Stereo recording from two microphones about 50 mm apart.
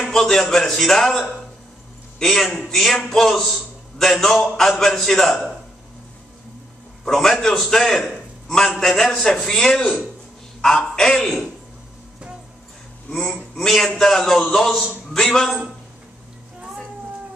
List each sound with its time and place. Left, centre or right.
0.1 s a man's voice: centre
7.1 s a man's voice: centre
11.0 s a man's voice: centre
13.1 s a man's voice: centre